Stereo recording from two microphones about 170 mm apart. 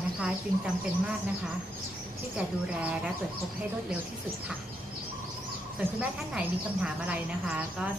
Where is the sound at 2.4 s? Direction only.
5° right (ahead or behind).